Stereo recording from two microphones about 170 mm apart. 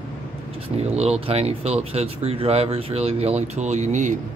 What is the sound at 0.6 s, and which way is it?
Speech, 40° right (ahead or behind).